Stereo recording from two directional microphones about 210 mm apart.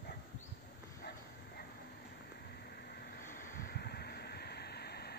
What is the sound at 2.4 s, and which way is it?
Vehicle, 50° left (ahead or behind).